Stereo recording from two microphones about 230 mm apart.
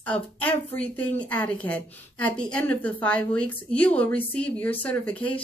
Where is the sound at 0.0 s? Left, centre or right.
Centre.